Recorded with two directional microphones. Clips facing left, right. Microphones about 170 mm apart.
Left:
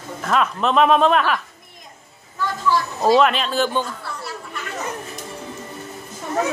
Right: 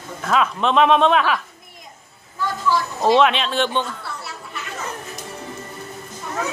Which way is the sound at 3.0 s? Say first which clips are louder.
Even; centre (ahead or behind).